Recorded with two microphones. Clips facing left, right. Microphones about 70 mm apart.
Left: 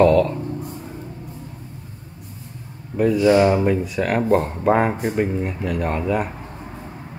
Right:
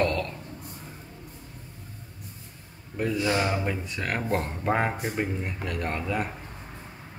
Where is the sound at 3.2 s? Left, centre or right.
Left.